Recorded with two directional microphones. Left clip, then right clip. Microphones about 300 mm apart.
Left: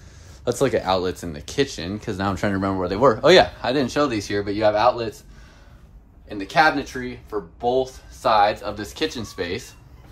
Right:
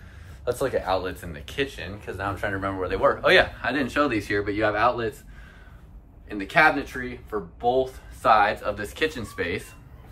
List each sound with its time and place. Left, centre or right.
0.5 s speech: left
6.2 s speech: centre